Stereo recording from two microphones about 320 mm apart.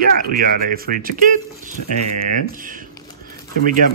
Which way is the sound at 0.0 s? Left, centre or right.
Right.